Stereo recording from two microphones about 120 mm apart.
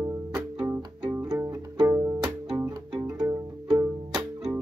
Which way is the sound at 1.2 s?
30° right (ahead or behind).